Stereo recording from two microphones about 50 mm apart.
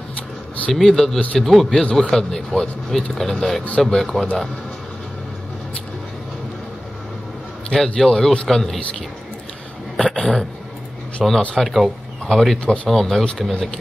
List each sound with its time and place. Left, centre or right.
0.7 s a man's voice: centre
7.7 s speech: centre
9.9 s a sound: centre
11.2 s a man's voice: centre
12.6 s speech: centre
12.9 s speech: centre